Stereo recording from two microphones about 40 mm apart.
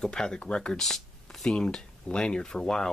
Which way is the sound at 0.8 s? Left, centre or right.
Centre.